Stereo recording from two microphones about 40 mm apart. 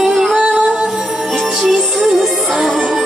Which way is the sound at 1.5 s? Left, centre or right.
Centre.